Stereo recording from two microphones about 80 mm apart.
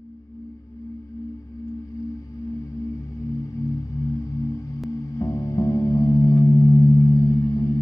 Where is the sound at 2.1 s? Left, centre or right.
Left.